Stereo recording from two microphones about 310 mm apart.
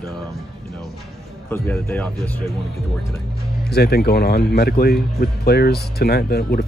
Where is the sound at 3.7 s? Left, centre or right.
Left.